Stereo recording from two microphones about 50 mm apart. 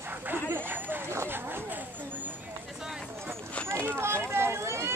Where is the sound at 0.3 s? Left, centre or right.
Right.